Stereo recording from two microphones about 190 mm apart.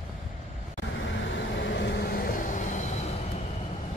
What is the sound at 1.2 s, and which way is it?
Vehicle, 70° left (ahead or behind).